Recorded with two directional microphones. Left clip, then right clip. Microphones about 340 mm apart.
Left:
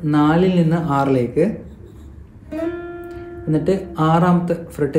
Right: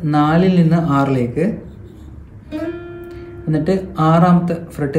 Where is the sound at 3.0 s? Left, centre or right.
Centre.